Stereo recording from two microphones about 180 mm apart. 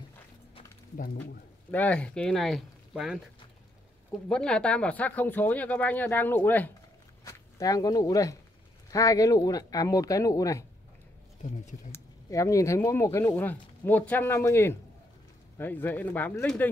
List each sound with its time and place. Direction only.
1.7 s speech: 10° left (ahead or behind)
4.3 s speech: 5° left (ahead or behind)
11.9 s speech: 15° left (ahead or behind)